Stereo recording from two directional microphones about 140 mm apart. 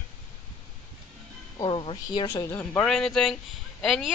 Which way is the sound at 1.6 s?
40° left (ahead or behind).